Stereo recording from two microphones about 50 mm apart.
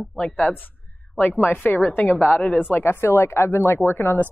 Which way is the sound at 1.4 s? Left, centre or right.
Left.